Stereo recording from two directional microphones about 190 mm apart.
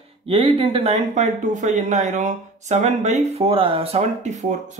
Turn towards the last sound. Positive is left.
turn(degrees=-35)  # may be behind; listen again after turning